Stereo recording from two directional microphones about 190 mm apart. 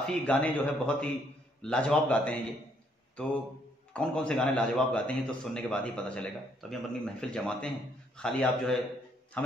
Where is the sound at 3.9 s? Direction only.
5° left (ahead or behind).